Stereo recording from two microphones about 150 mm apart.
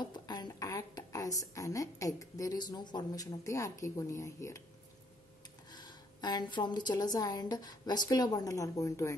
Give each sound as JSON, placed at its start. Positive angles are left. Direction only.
{"t": 0.0, "sound": "a woman's voice", "side_deg": 30}
{"t": 5.7, "sound": "a woman's voice", "side_deg": 30}